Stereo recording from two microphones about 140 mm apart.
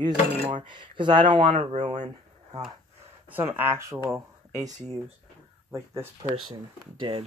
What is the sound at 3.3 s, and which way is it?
Speech, 15° right (ahead or behind).